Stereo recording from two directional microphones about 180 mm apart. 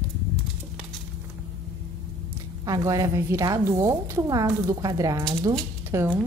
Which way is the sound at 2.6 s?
20° right (ahead or behind).